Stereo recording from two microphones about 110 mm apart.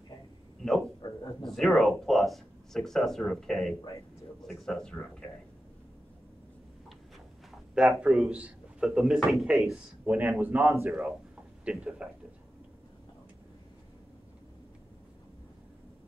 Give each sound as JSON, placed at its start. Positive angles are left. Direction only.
{"t": 0.6, "sound": "a sound", "side_deg": 0}
{"t": 1.4, "sound": "speech", "side_deg": 0}
{"t": 7.7, "sound": "speech", "side_deg": -5}
{"t": 10.0, "sound": "speech", "side_deg": -15}
{"t": 10.9, "sound": "speech", "side_deg": -5}